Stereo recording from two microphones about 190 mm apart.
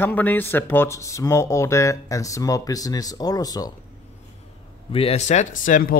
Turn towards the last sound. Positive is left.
turn(degrees=45)  # may be behind; listen again after turning